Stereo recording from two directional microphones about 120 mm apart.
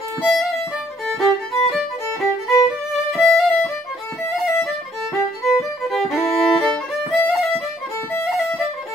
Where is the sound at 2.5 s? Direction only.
Centre (ahead or behind).